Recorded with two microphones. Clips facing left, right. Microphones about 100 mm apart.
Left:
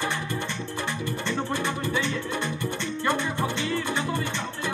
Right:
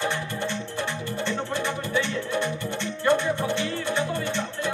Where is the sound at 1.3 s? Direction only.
15° left (ahead or behind).